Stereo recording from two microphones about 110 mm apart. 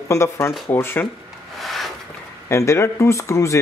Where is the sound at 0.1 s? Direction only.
25° left (ahead or behind).